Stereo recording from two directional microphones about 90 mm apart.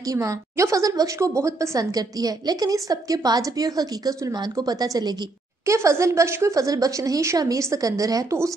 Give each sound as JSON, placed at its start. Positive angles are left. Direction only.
{"t": 0.0, "sound": "a woman's voice", "side_deg": -40}
{"t": 5.7, "sound": "speech", "side_deg": -35}